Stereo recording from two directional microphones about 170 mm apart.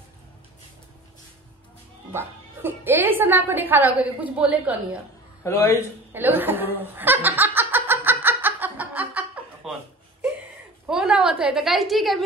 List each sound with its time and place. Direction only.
2.1 s speech: 10° right (ahead or behind)
5.4 s a man's voice: 15° left (ahead or behind)
6.1 s snicker: 10° right (ahead or behind)
10.9 s a woman's voice: 5° right (ahead or behind)